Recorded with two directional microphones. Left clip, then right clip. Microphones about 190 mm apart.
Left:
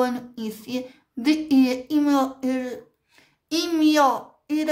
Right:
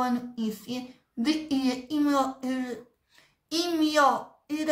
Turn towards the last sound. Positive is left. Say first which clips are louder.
# left 5 dB
turn(degrees=40)  # may be behind; listen again after turning